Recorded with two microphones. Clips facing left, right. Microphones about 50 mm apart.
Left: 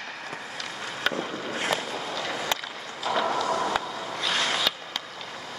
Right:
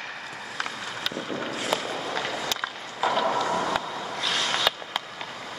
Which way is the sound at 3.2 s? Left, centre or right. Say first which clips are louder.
Right 1 dB; centre.